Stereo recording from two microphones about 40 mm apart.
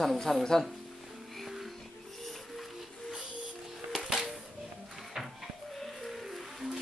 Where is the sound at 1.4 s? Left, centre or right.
Centre.